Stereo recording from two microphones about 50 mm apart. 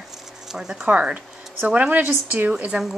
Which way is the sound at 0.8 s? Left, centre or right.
Right.